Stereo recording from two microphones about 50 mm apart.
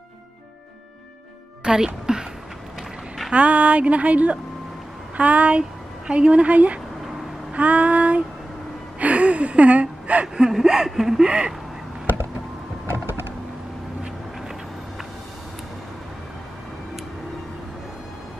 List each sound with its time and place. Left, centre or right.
1.6 s speech: centre
2.1 s a sound: centre
3.3 s a woman's voice: right
7.0 s vehicle: centre
7.5 s female singing: right
9.0 s gasp: right
10.2 s speech: centre